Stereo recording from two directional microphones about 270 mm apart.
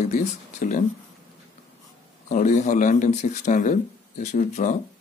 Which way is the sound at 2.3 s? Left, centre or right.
Left.